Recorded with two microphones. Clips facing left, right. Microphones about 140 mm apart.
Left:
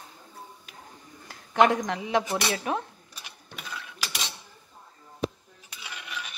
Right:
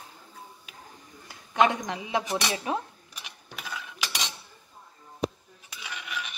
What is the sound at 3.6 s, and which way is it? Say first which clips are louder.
Mechanisms: right 2 dB; 5° left (ahead or behind).